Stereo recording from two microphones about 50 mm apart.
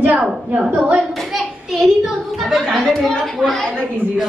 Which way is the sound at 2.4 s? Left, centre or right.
Centre.